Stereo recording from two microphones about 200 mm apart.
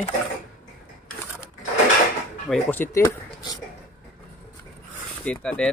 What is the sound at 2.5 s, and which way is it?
Speech, 10° left (ahead or behind).